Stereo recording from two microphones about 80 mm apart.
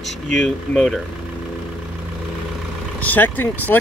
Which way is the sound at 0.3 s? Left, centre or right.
Centre.